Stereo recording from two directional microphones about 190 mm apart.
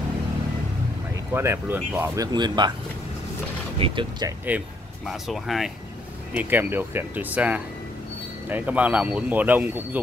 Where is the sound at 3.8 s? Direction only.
25° right (ahead or behind).